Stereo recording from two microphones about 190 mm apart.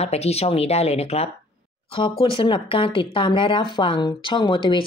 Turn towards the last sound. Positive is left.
turn(degrees=25)  # may be behind; listen again after turning